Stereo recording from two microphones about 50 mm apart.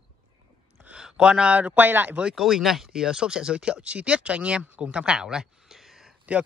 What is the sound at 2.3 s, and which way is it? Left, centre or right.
Speech, centre.